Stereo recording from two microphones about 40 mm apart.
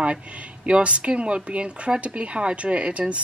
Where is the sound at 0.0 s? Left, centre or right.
Right.